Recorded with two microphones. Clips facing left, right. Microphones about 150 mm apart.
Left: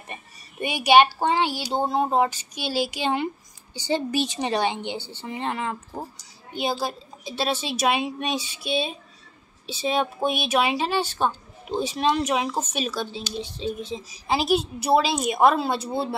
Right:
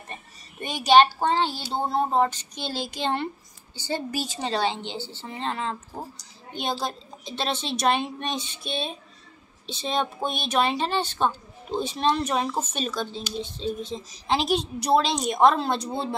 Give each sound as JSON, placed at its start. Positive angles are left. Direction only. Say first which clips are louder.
{"t": 0.1, "sound": "speech", "louder": "left 3 dB", "side_deg": 10}